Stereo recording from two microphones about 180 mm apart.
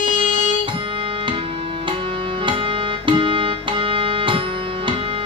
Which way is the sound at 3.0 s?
30° right (ahead or behind).